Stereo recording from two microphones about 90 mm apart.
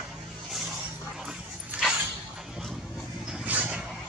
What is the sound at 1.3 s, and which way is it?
Dog, 5° right (ahead or behind).